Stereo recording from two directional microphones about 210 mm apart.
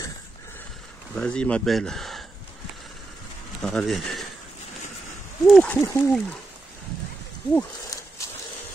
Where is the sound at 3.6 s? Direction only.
Centre (ahead or behind).